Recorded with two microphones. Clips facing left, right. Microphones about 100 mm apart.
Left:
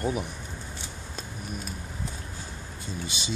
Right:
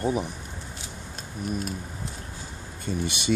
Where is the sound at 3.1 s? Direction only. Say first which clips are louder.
Right 10 dB; 60° right (ahead or behind).